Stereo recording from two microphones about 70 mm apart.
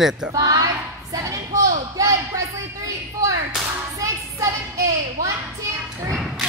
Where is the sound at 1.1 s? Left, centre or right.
Right.